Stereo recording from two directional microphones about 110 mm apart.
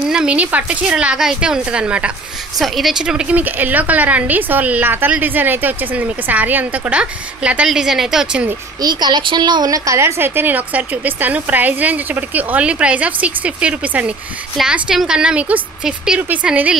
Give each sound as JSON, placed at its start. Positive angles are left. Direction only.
{"t": 0.1, "sound": "a woman's voice", "side_deg": -10}
{"t": 8.8, "sound": "a woman's voice", "side_deg": -40}